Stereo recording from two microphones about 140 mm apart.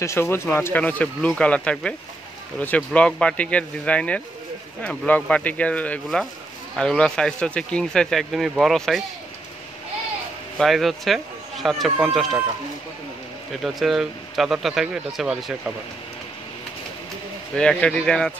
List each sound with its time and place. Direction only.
0.0 s speech: 20° left (ahead or behind); by 9.0 s centre (ahead or behind)
10.6 s speech: centre (ahead or behind)
13.5 s speech: centre (ahead or behind)
17.6 s speech: 5° left (ahead or behind)